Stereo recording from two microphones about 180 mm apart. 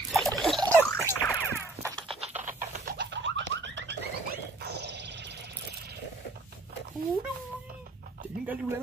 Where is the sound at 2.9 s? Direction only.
90° right.